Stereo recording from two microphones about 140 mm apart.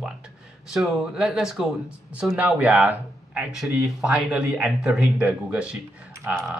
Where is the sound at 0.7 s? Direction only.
Centre (ahead or behind).